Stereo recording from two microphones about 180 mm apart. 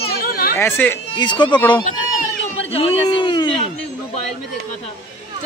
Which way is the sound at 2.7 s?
30° left (ahead or behind).